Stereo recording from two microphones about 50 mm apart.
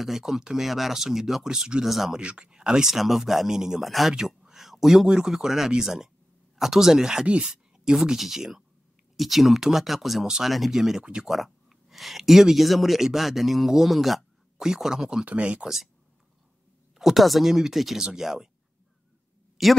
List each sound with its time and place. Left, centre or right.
0.0 s speech: centre
2.1 s speech: centre
4.1 s a sound: centre
5.1 s speech: centre
7.2 s speech: right
7.5 s speech: centre
15.2 s speech: right
15.6 s speech: centre
17.0 s speech: centre
19.6 s speech: centre